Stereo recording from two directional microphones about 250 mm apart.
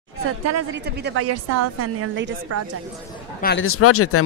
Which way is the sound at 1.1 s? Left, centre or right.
Right.